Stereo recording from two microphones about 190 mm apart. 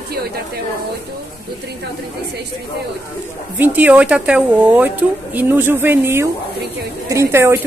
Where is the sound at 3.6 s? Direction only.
10° right (ahead or behind).